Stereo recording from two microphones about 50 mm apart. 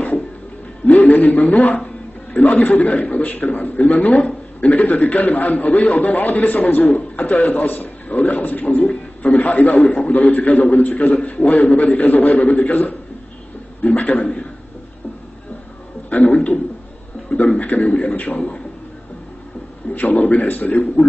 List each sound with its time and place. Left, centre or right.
0.8 s a man's voice: left
16.1 s a man's voice: left
17.6 s a man's voice: left
19.9 s a man's voice: left